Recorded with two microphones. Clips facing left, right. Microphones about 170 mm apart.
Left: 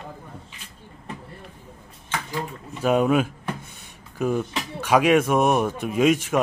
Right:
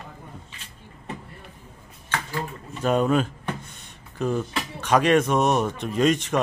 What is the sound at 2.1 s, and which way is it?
Speech, 10° left (ahead or behind).